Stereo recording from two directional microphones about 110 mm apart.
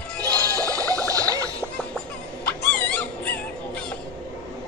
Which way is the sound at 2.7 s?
10° left (ahead or behind).